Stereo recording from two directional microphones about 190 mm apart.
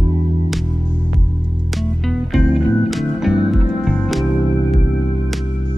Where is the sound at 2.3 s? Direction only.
Centre (ahead or behind).